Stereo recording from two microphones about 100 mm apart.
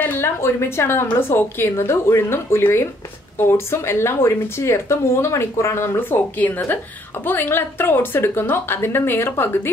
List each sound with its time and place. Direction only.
0.0 s a woman's voice: 25° left (ahead or behind)